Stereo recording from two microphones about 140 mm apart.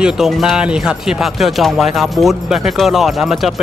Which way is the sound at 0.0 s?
5° right (ahead or behind).